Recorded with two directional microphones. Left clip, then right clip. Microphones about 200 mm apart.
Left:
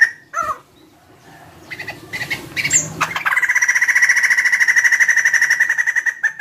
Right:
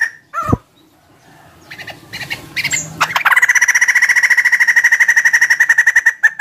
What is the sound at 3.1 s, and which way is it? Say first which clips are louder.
Frog: right 6 dB; 50° right (ahead or behind).